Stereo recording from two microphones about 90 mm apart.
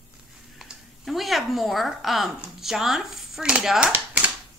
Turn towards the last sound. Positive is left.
turn(degrees=-15)  # may be behind; listen again after turning